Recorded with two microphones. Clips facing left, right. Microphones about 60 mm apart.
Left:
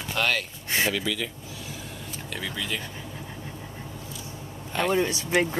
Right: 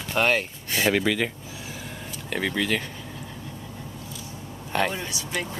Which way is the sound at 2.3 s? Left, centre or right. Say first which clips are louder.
Right 7 dB; right.